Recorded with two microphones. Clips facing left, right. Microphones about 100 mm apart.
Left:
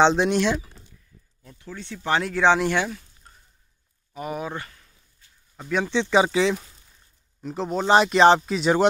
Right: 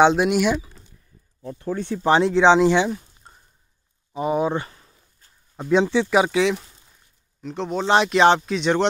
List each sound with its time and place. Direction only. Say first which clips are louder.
0.0 s speech: right 2 dB; 10° right (ahead or behind)
1.4 s speech: right 12 dB; 45° right (ahead or behind)
2.0 s speech: right 6 dB; 30° right (ahead or behind)
2.9 s a sound: right 7 dB; 30° right (ahead or behind)
5.9 s speech: right 1 dB; 5° right (ahead or behind)